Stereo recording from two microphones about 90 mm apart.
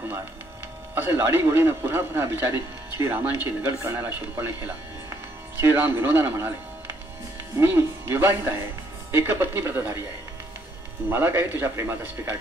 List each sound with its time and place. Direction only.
0.9 s a man's voice: 25° right (ahead or behind)
7.5 s a man's voice: 25° right (ahead or behind)
11.1 s a man's voice: 25° right (ahead or behind)